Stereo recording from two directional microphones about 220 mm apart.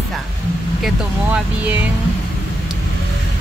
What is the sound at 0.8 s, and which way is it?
Speech, 5° right (ahead or behind).